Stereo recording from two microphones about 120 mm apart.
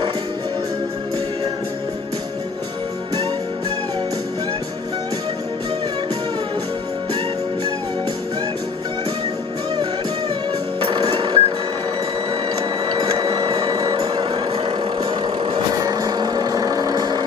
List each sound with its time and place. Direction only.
11.1 s music: 40° right (ahead or behind)
13.2 s music: 40° right (ahead or behind)
15.0 s vehicle: 40° right (ahead or behind)